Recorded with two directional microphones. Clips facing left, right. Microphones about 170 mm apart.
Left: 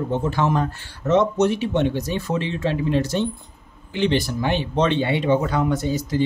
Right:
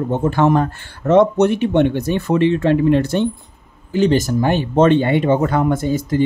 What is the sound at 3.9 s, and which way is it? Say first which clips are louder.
Speech: right 6 dB; 40° right (ahead or behind).